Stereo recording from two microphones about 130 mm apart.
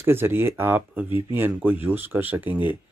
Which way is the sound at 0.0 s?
15° right (ahead or behind).